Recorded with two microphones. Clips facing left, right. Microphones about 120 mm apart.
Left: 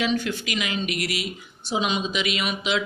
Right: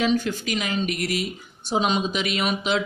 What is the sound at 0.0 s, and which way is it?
Speech, 40° right (ahead or behind).